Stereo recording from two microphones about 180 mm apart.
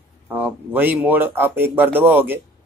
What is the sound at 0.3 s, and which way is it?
A man's voice, 10° right (ahead or behind).